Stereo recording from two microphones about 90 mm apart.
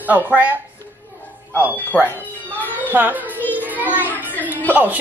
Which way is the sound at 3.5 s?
20° right (ahead or behind).